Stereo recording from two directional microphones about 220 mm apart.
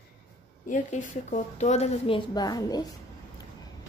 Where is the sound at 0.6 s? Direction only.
35° left (ahead or behind); by 2.8 s 20° left (ahead or behind).